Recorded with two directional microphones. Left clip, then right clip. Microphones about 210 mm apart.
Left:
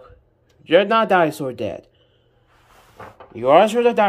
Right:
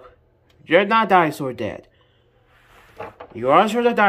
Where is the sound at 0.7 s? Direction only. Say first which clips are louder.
Left 1 dB; centre (ahead or behind).